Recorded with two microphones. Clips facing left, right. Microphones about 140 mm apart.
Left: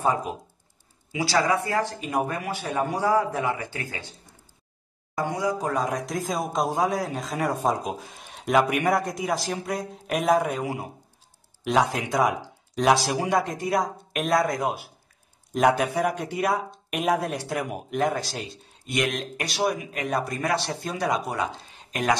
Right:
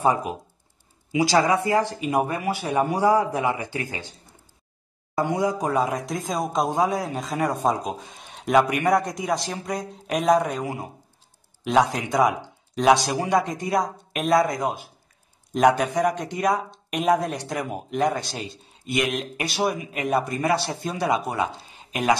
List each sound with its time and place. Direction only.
0.0 s speech: 10° right (ahead or behind)
5.1 s speech: 25° right (ahead or behind)
5.7 s speech: 5° right (ahead or behind)